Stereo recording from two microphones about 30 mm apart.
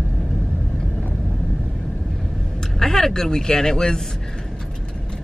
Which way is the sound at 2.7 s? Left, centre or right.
Centre.